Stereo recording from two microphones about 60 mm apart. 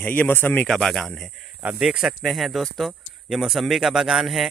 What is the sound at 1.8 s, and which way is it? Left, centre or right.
Speech, centre.